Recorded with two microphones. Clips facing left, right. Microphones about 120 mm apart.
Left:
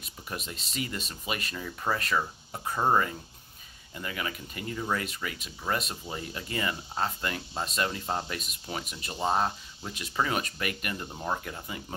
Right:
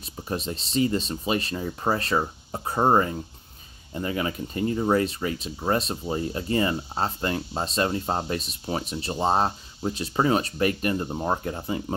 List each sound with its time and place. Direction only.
0.0 s speech: 30° right (ahead or behind)